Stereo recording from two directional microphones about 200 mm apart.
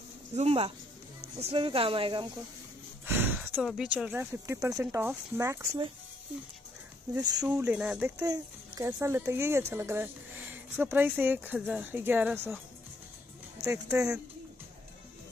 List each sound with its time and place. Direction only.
0.4 s speech: 30° right (ahead or behind)
3.1 s a sound: 10° right (ahead or behind)
3.5 s a child's voice: centre (ahead or behind)
7.2 s a child's voice: 20° right (ahead or behind)
8.2 s a child's voice: 15° right (ahead or behind)
13.6 s speech: 15° right (ahead or behind)